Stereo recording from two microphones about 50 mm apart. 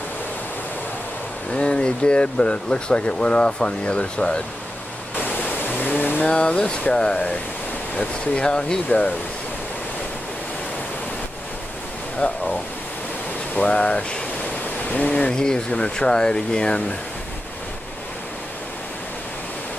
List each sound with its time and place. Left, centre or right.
1.5 s speech: left
5.2 s pink noise: left
6.2 s speech: left
8.8 s speech: left
12.2 s speech: left
13.6 s speech: left